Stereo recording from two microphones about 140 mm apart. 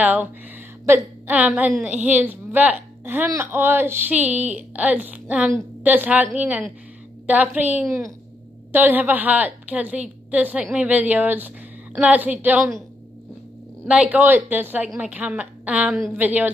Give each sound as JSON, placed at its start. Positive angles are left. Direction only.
{"t": 0.0, "sound": "a woman's voice", "side_deg": -10}
{"t": 13.8, "sound": "a woman's voice", "side_deg": -10}